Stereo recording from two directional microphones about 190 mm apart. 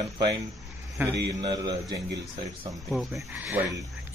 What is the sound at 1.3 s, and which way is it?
Speech, 25° right (ahead or behind).